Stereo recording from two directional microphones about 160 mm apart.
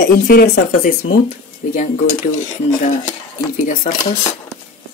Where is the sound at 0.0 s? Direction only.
70° left (ahead or behind).